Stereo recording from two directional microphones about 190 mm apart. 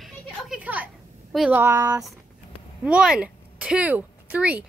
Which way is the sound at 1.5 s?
15° right (ahead or behind).